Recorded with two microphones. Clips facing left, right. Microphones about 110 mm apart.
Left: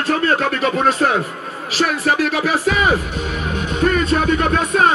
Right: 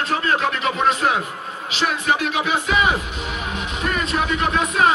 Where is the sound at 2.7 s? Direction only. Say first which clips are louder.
Left 3 dB; 45° left (ahead or behind).